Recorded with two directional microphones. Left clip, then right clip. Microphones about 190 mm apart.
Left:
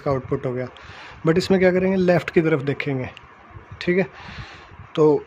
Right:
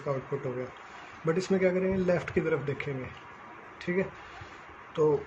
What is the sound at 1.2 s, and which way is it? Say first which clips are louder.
Speech: left 9 dB; 60° left (ahead or behind).